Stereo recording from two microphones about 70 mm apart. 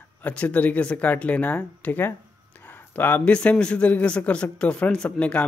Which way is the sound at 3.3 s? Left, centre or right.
Centre.